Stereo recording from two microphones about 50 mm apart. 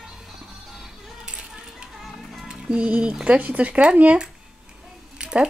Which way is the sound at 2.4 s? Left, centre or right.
Centre.